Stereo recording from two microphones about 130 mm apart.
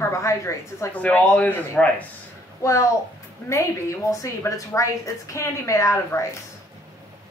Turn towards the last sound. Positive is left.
turn(degrees=20)  # may be behind; listen again after turning